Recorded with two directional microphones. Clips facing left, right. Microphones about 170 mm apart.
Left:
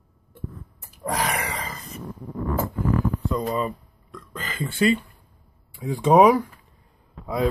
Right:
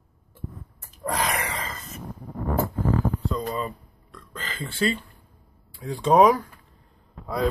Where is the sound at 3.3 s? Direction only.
20° left (ahead or behind).